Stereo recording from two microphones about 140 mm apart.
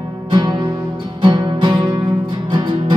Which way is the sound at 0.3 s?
35° right (ahead or behind).